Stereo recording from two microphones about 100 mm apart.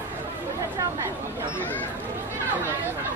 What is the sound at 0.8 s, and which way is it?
Chatter, 30° right (ahead or behind).